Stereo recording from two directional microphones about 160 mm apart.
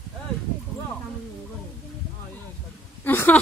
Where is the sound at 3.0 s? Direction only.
10° left (ahead or behind).